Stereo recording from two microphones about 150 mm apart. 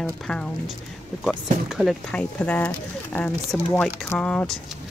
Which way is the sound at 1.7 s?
Centre (ahead or behind).